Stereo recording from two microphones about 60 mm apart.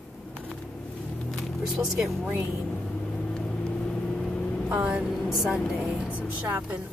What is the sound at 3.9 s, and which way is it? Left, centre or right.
Vehicle, centre.